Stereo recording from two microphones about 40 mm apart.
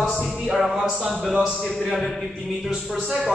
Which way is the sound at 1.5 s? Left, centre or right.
Centre.